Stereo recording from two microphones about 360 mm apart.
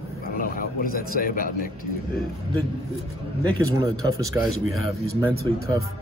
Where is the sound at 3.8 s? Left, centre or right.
Centre.